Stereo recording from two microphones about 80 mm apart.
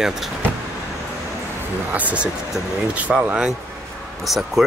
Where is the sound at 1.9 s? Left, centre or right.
Centre.